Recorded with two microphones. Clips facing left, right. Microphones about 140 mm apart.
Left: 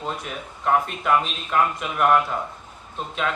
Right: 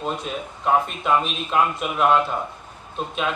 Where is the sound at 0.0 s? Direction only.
20° right (ahead or behind).